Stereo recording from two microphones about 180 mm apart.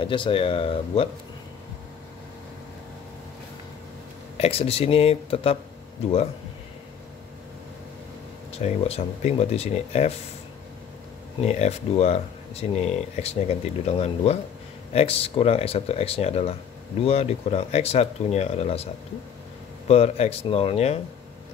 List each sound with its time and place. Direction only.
0.0 s speech: 30° left (ahead or behind)
4.4 s speech: 35° left (ahead or behind)
8.5 s speech: 35° left (ahead or behind)
11.4 s speech: 35° left (ahead or behind)
19.9 s speech: 35° left (ahead or behind)